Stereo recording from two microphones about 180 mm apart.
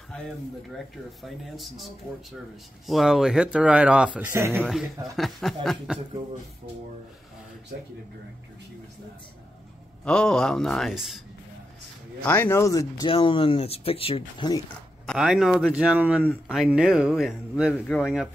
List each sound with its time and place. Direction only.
1.2 s speech: centre (ahead or behind)
2.9 s speech: centre (ahead or behind)
4.6 s speech: centre (ahead or behind)
10.0 s speech: 5° left (ahead or behind)
12.3 s speech: 15° left (ahead or behind)
13.1 s speech: 30° left (ahead or behind)
15.0 s speech: 5° right (ahead or behind)